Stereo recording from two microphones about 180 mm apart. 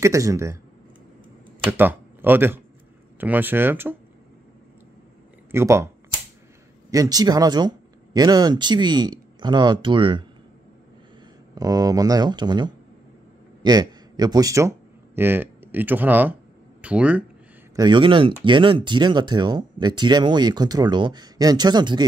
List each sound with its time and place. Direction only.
0.0 s speech: 15° right (ahead or behind)
1.6 s speech: 10° right (ahead or behind)
5.5 s speech: 15° right (ahead or behind)
6.9 s speech: 20° right (ahead or behind)
11.5 s speech: 20° right (ahead or behind)
17.7 s speech: 25° right (ahead or behind)